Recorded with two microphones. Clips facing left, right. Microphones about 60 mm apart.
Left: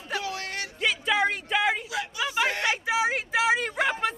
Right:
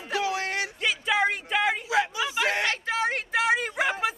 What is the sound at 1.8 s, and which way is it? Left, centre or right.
Hubbub, right.